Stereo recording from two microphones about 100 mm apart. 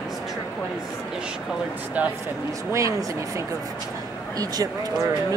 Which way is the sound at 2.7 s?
35° right (ahead or behind).